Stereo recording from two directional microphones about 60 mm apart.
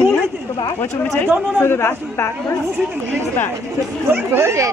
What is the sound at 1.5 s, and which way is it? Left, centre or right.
A man's voice, left.